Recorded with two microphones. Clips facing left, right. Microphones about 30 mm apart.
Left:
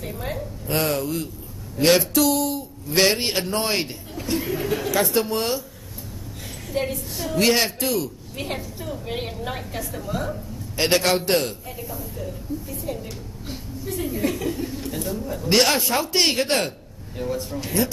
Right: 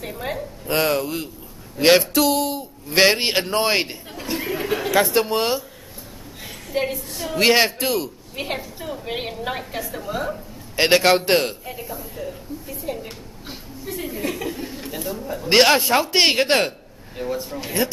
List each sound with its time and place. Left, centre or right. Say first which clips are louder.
0.0 s a woman's voice: right 2 dB; centre
6.7 s a woman's voice: right 2 dB; centre
7.0 s a woman's voice: even; centre
7.3 s a woman's voice: right 3 dB; right
15.5 s a man's voice: right 4 dB; right
17.2 s a woman's voice: right 1 dB; centre